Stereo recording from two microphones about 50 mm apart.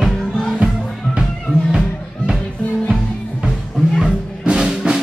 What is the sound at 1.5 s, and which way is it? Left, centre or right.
Music, left.